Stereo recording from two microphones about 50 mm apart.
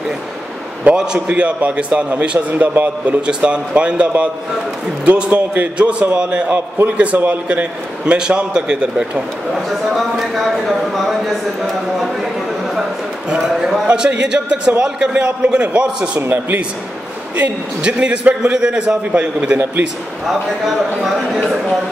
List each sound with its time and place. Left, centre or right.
0.9 s a man's voice: right
2.7 s a man's voice: right
3.2 s a man's voice: right
8.0 s a man's voice: right
9.7 s speech: centre
13.4 s a man's voice: centre
16.3 s a man's voice: right
17.8 s a man's voice: right
20.2 s speech: centre